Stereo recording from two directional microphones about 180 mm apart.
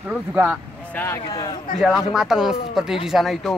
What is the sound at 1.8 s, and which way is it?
Speech, 5° right (ahead or behind).